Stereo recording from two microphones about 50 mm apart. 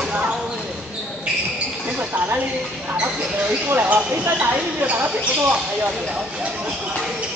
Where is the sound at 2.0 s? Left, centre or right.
Right.